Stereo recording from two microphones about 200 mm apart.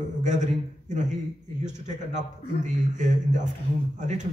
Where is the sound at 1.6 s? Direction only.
35° right (ahead or behind).